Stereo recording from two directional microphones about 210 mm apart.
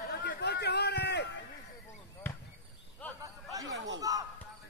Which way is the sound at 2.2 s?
10° left (ahead or behind).